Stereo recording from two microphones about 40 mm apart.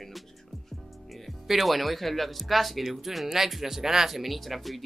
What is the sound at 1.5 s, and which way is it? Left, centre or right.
Speech, centre.